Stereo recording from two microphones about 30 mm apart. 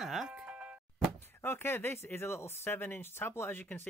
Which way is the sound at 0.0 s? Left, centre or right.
Centre.